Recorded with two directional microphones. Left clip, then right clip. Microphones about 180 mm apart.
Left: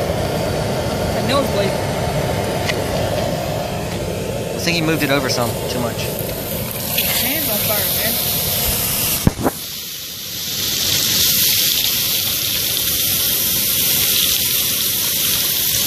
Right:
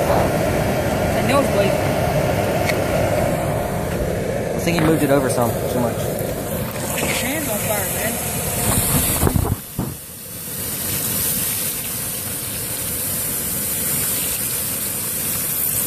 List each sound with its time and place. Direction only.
1.2 s vehicle: 10° left (ahead or behind)
4.6 s speech: 15° right (ahead or behind)
5.2 s speech: 5° right (ahead or behind)